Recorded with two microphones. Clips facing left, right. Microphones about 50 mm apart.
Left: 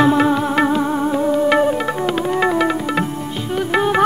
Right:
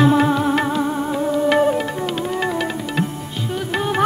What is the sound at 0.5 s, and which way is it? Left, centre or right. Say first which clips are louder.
Music: left 3 dB; left.